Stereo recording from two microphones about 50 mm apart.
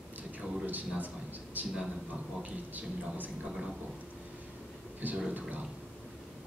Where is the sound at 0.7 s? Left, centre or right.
Right.